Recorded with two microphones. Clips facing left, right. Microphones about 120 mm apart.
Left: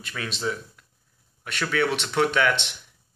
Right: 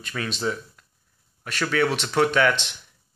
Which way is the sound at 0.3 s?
15° right (ahead or behind).